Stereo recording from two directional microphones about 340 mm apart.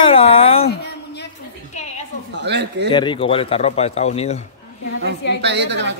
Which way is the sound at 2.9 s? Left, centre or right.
Centre.